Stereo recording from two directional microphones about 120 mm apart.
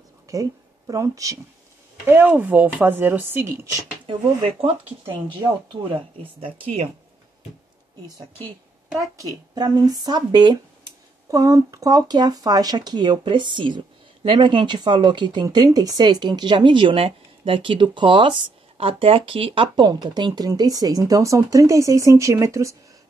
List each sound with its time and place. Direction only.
0.3 s speech: 30° right (ahead or behind)
2.0 s speech: 15° right (ahead or behind)
4.1 s speech: 55° right (ahead or behind)
5.4 s speech: 40° right (ahead or behind)
8.9 s speech: 30° right (ahead or behind)